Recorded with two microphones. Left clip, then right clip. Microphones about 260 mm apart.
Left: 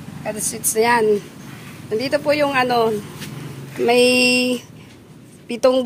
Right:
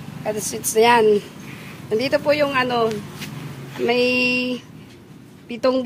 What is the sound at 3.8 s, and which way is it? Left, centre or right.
Mantra, left.